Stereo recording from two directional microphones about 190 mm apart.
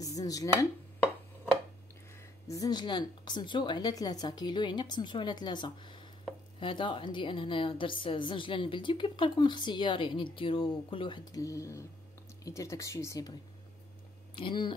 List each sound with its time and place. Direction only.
0.0 s speech: 20° left (ahead or behind)
2.4 s a woman's voice: 20° left (ahead or behind)